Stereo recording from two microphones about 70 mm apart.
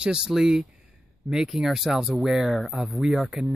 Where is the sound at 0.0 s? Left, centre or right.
Centre.